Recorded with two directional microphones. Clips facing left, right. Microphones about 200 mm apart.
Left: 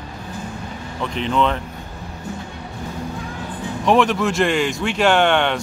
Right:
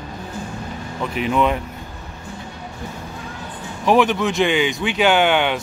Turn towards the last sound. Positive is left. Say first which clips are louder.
# even
turn(degrees=-5)  # may be behind; listen again after turning